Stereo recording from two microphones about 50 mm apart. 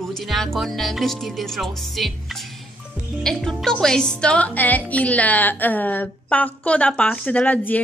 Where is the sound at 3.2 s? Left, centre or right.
Centre.